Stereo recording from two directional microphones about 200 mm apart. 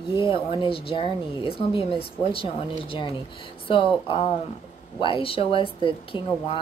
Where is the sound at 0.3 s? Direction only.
25° left (ahead or behind).